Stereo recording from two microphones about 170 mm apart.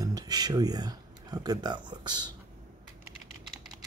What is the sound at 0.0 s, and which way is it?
Speech, 20° right (ahead or behind).